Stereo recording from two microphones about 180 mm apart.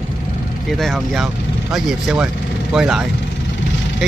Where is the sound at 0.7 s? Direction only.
Centre (ahead or behind).